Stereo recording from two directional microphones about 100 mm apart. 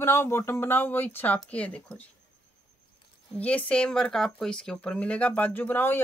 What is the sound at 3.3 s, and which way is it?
Speech, 10° left (ahead or behind).